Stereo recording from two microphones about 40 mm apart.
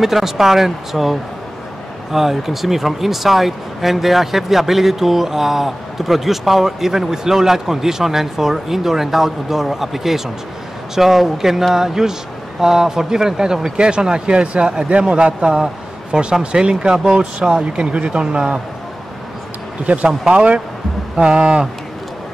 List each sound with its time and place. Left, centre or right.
0.0 s speech: centre
2.1 s a man's voice: centre; by 18.6 s right
19.9 s speech: right